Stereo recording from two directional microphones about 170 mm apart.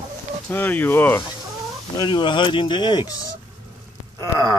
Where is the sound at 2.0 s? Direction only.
25° left (ahead or behind).